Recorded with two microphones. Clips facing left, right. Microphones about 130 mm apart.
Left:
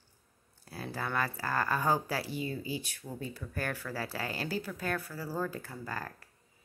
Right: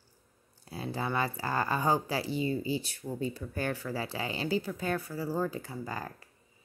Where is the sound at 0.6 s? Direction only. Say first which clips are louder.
Right 3 dB; 15° right (ahead or behind).